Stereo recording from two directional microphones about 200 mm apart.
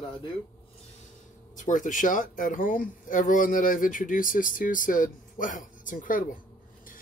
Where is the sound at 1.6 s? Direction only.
40° left (ahead or behind).